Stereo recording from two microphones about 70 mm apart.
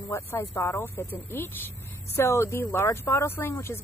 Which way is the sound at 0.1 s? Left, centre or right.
Left.